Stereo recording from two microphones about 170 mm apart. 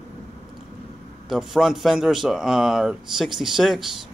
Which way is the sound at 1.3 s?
Centre (ahead or behind).